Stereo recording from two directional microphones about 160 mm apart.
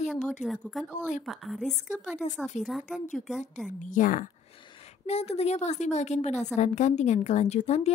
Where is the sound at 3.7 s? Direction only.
55° left (ahead or behind).